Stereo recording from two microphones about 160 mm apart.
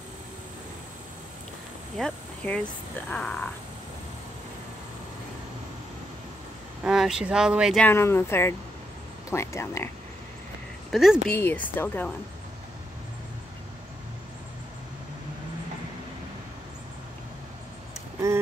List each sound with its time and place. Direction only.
2.0 s speech: 5° left (ahead or behind)
6.8 s speech: 5° right (ahead or behind)
7.8 s speech: 15° left (ahead or behind)
10.9 s speech: centre (ahead or behind)
11.2 s speech: 10° left (ahead or behind)